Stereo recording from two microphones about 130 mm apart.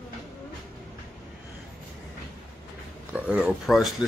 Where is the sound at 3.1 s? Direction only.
10° right (ahead or behind).